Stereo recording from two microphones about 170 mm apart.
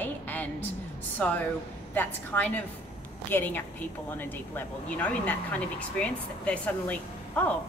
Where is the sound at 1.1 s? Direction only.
10° left (ahead or behind).